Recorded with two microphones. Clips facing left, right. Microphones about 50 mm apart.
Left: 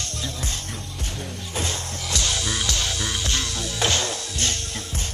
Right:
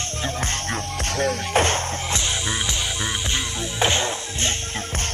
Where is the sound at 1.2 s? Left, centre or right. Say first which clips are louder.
Right 11 dB; right.